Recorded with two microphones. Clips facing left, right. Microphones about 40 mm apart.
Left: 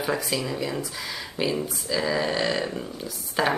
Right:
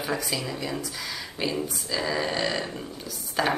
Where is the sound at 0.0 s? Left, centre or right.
Centre.